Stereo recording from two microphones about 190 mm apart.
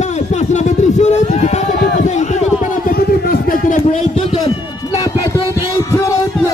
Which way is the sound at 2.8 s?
50° left (ahead or behind).